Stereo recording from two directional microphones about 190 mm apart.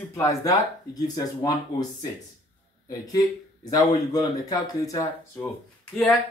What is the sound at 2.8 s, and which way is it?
A man's voice, 20° left (ahead or behind).